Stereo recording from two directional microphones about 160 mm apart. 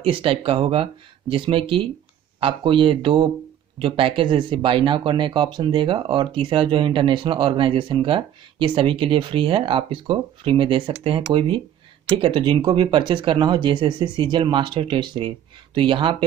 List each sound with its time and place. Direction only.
0.0 s speech: 35° right (ahead or behind)